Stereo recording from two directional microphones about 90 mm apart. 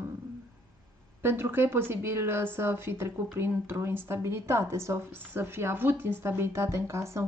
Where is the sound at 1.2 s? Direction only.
25° right (ahead or behind).